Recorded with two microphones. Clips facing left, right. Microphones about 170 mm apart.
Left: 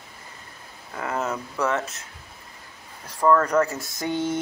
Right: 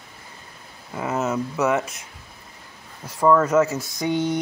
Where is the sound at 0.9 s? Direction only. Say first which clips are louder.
Right 4 dB; 5° right (ahead or behind).